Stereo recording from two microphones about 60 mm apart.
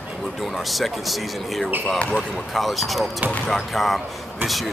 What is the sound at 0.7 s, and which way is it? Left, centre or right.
Speech, centre.